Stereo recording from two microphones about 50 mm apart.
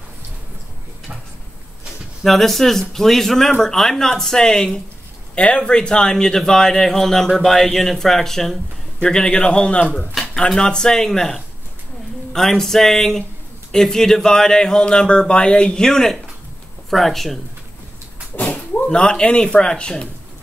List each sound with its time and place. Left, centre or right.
2.2 s a man's voice: centre; by 10.0 s left
10.5 s a man's voice: centre
18.3 s a sound: left
18.9 s a man's voice: centre